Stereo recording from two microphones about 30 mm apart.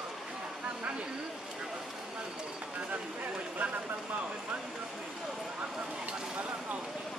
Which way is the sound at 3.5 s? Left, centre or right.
Right.